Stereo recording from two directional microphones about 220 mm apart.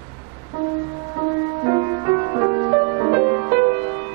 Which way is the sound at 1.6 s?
25° right (ahead or behind).